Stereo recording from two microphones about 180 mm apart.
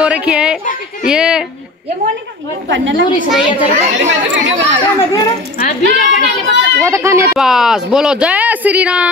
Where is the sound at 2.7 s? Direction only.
90° right.